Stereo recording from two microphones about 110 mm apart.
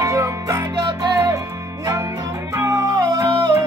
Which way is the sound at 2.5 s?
30° right (ahead or behind).